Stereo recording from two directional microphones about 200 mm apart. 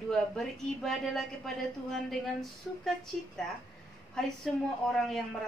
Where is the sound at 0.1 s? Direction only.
Centre (ahead or behind).